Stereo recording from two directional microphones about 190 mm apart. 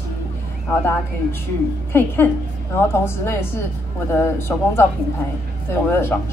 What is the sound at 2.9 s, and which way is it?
A woman's voice, 15° left (ahead or behind).